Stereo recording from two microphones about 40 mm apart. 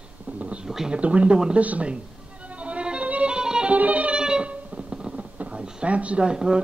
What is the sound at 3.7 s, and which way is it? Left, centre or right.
Music, right.